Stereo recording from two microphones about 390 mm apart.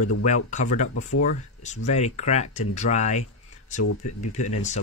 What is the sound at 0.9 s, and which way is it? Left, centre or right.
Speech, left.